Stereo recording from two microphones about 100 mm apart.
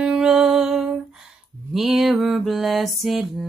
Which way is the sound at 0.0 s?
5° right (ahead or behind).